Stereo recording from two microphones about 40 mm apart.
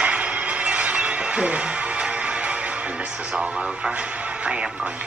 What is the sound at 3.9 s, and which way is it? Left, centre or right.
Speech, right.